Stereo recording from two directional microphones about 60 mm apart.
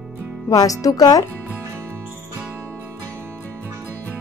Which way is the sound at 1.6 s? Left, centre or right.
Right.